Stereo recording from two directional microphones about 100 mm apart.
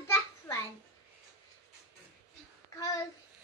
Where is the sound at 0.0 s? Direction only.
25° left (ahead or behind).